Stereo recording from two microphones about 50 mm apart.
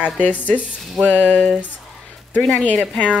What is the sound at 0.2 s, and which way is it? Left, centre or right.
Speech, left.